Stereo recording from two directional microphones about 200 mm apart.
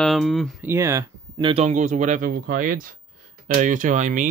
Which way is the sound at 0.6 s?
15° right (ahead or behind).